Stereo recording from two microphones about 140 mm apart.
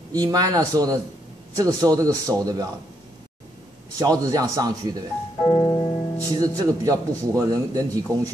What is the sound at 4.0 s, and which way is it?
Speech, 25° right (ahead or behind).